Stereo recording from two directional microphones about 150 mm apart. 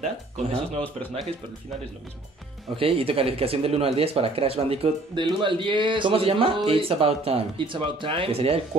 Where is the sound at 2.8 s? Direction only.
40° right (ahead or behind).